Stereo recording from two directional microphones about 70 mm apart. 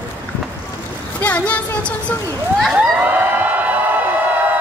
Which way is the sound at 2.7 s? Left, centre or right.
Right.